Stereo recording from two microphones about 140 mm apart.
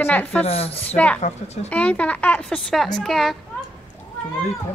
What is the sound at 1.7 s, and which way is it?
A woman's voice, 10° left (ahead or behind).